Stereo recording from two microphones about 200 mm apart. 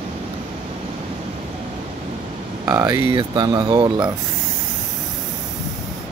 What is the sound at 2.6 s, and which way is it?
Speech, 15° right (ahead or behind).